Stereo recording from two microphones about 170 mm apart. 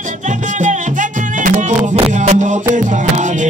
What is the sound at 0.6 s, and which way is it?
Music, 50° right (ahead or behind).